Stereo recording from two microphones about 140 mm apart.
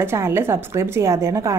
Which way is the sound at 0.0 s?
15° right (ahead or behind).